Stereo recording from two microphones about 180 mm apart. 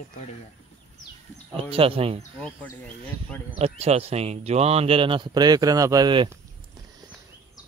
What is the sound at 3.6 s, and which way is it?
Speech, 35° right (ahead or behind).